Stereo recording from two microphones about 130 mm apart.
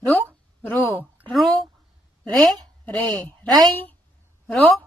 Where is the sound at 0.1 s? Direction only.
15° left (ahead or behind).